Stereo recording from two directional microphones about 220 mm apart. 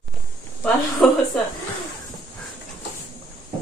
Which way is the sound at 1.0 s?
Centre (ahead or behind).